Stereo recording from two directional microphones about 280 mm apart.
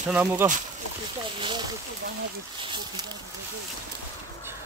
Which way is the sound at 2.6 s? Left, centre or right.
Centre.